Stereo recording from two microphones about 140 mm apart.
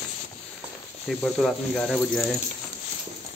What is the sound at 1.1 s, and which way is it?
Speech, centre (ahead or behind).